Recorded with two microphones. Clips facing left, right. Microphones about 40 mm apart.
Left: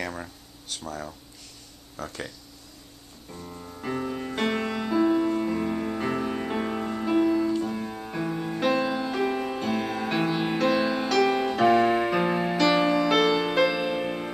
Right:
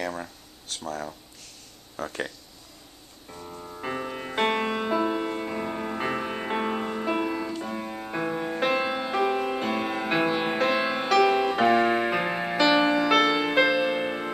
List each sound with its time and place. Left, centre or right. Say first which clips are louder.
0.0 s speech: right 2 dB; centre
2.0 s speech: right 3 dB; centre
3.3 s music: right 1 dB; centre